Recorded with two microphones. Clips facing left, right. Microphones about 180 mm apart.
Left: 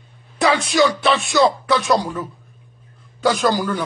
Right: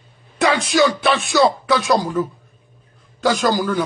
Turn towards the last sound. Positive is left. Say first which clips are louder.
# right 1 dB
turn(degrees=0)  # may be behind; listen again after turning